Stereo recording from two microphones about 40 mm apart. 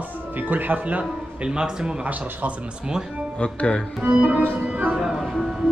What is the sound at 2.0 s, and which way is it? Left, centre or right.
Speech, right.